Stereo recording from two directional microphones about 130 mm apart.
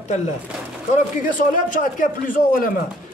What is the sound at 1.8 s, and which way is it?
Speech, 90° left.